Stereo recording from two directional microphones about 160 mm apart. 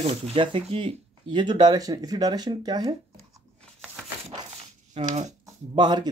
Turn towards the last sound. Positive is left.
turn(degrees=-25)  # may be behind; listen again after turning